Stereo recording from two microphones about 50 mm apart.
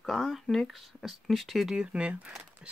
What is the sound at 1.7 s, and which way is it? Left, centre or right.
Speech, right.